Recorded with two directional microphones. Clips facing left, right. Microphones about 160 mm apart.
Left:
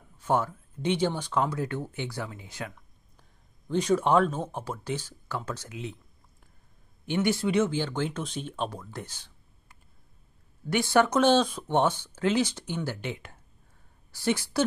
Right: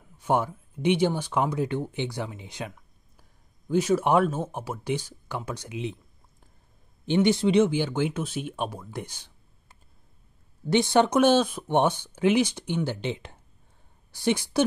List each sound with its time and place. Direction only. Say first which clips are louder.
0.2 s speech: right 2 dB; 15° right (ahead or behind)
2.7 s speech: right 2 dB; 5° right (ahead or behind)
7.1 s speech: right 5 dB; 20° right (ahead or behind)
10.7 s a woman's voice: right 2 dB; 20° right (ahead or behind)